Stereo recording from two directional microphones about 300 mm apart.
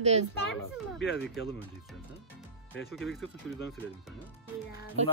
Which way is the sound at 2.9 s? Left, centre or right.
Centre.